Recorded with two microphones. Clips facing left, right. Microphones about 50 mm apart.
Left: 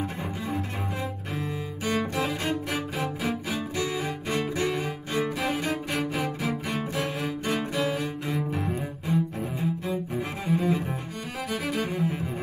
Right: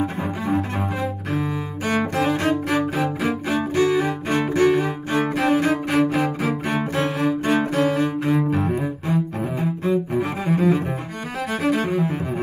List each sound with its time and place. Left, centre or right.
1.3 s cello: right
4.8 s cello: right
8.3 s cello: right
11.5 s music: right